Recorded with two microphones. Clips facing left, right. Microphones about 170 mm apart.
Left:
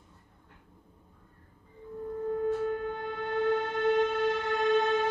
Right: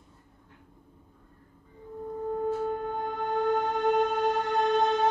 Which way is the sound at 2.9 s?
45° right (ahead or behind).